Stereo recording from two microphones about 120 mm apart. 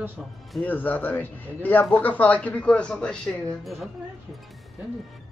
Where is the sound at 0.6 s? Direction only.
15° left (ahead or behind).